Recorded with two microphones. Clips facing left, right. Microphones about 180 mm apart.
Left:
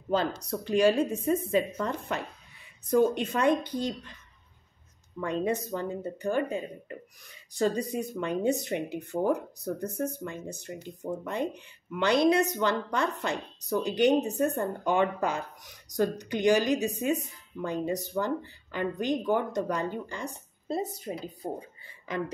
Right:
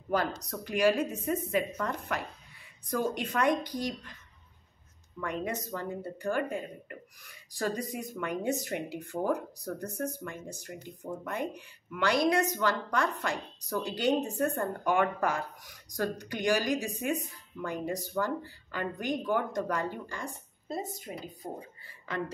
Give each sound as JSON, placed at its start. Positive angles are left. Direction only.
{"t": 0.1, "sound": "speech", "side_deg": 30}
{"t": 5.2, "sound": "speech", "side_deg": 25}